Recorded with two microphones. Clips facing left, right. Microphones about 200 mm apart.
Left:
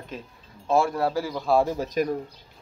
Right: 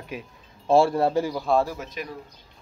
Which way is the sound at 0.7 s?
30° right (ahead or behind).